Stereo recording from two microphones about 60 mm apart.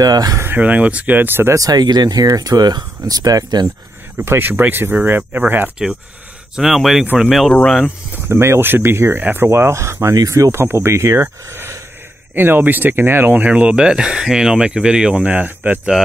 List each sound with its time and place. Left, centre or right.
0.0 s speech: right
0.6 s speech: right
1.1 s speech: right
1.5 s speech: right
4.2 s speech: right
5.8 s speech: centre
8.3 s speech: right
9.2 s speech: right
9.5 s speech: right
10.5 s speech: right
12.4 s speech: right; by 15.2 s centre
15.2 s speech: right